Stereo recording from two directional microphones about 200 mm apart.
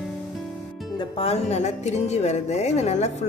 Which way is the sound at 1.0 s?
30° left (ahead or behind).